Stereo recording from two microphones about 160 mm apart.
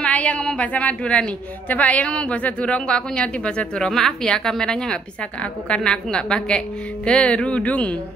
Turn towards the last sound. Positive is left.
turn(degrees=10)  # may be behind; listen again after turning